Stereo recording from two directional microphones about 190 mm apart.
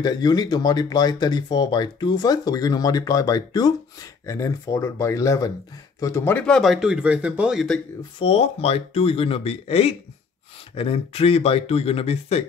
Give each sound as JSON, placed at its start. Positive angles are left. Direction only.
{"t": 0.0, "sound": "speech", "side_deg": 20}
{"t": 8.2, "sound": "speech", "side_deg": 30}